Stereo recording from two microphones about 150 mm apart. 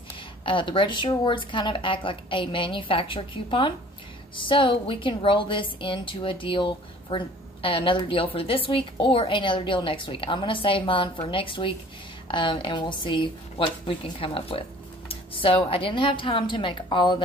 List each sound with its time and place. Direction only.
0.5 s a woman's voice: 35° left (ahead or behind)